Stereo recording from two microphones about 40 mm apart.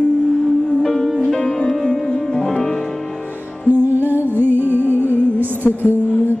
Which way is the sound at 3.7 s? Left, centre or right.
Right.